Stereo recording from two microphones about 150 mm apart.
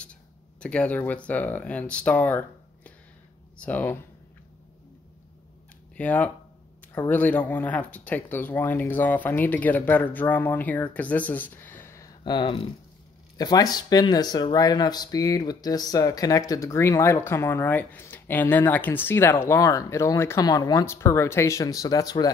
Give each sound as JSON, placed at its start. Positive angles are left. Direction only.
{"t": 0.0, "sound": "speech", "side_deg": 10}
{"t": 5.9, "sound": "speech", "side_deg": 10}
{"t": 12.2, "sound": "speech", "side_deg": 30}